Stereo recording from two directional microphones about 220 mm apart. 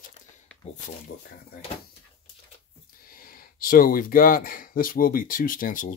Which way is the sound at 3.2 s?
40° left (ahead or behind).